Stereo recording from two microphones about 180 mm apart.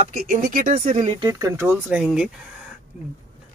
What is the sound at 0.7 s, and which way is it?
Speech, 40° right (ahead or behind).